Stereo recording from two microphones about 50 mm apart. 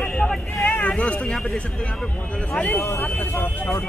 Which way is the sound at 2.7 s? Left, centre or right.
Left.